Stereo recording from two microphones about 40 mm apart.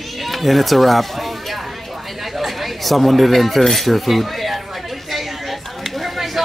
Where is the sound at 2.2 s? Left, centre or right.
Centre.